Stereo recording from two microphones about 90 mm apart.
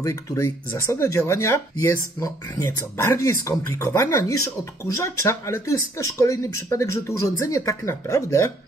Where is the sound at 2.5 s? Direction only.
25° left (ahead or behind).